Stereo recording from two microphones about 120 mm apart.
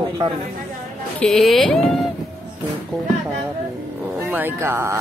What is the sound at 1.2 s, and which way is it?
Speech, 5° left (ahead or behind).